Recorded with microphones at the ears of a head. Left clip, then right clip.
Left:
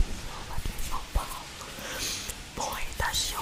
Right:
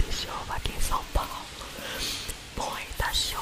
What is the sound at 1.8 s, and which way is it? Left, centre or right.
Whispering, centre.